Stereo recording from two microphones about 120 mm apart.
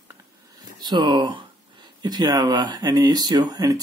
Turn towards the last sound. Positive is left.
turn(degrees=-30)  # may be behind; listen again after turning